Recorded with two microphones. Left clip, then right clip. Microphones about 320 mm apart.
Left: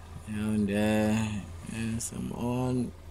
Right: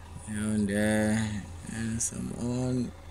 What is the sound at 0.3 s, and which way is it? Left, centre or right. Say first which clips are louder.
Speech: even; centre.